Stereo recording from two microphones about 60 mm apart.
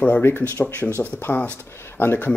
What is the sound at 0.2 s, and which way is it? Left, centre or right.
Speech, left.